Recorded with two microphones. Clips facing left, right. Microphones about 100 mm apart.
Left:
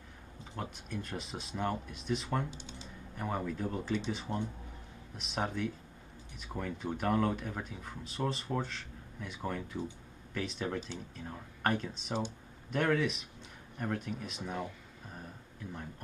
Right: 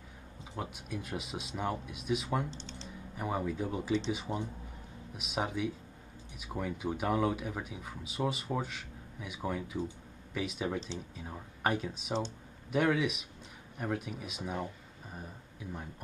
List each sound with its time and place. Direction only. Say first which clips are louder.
0.6 s speech: right 1 dB; 5° right (ahead or behind)
2.5 s typing: right 2 dB; 10° left (ahead or behind)
3.2 s speech: right 2 dB; 5° right (ahead or behind)